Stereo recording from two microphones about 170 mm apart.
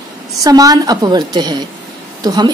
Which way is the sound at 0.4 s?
20° right (ahead or behind).